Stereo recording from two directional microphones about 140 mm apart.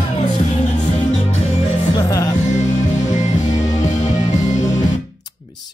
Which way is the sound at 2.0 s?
25° left (ahead or behind).